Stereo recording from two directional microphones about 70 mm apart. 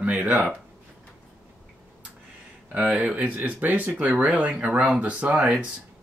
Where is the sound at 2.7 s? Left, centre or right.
Centre.